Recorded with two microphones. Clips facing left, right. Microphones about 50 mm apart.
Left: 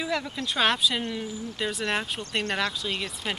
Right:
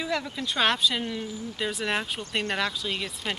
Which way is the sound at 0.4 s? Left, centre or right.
Centre.